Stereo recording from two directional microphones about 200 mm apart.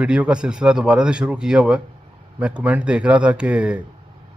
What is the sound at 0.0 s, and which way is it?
Speech, 5° right (ahead or behind).